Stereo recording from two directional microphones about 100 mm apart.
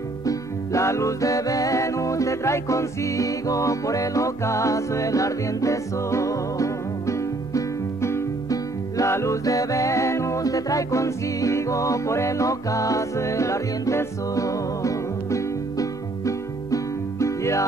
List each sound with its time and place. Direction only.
0.2 s music: 35° left (ahead or behind)